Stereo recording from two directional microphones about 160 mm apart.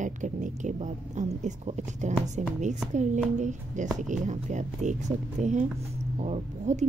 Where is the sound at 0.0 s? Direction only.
50° right (ahead or behind).